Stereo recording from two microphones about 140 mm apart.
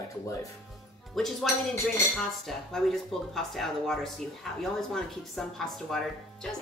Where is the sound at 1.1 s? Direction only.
Centre (ahead or behind).